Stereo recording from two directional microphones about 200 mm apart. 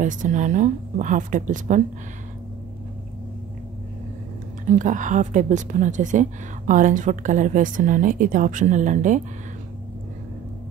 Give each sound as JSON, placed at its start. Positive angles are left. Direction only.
{"t": 0.0, "sound": "a woman's voice", "side_deg": -40}
{"t": 4.6, "sound": "a woman's voice", "side_deg": -40}